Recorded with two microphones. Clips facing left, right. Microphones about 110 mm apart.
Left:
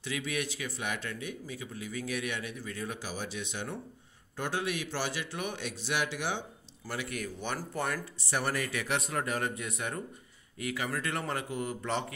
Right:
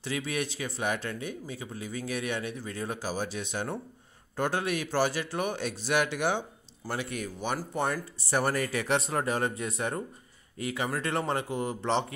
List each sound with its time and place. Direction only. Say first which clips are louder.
0.0 s a man's voice: right 3 dB; 35° right (ahead or behind); by 6.4 s 50° right (ahead or behind)
6.9 s speech: right 3 dB; 30° right (ahead or behind)
7.3 s speech: right 6 dB; 15° right (ahead or behind)
7.7 s speech: right 4 dB; 25° right (ahead or behind)
8.2 s speech: right 5 dB; 40° right (ahead or behind); by 12.1 s 25° right (ahead or behind)